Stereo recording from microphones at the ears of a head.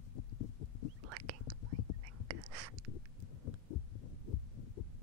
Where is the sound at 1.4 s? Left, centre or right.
Left.